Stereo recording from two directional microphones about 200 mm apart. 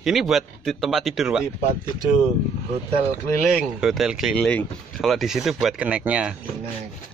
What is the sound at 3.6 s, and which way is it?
Speech, 5° right (ahead or behind).